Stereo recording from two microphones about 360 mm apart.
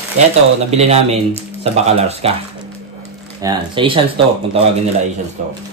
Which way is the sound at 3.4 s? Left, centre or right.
Centre.